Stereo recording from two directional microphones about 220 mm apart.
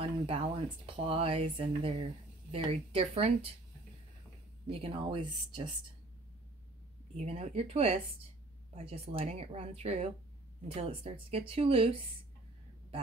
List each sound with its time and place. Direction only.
0.0 s speech: 25° right (ahead or behind)
4.6 s speech: 25° right (ahead or behind)
7.2 s speech: 30° right (ahead or behind)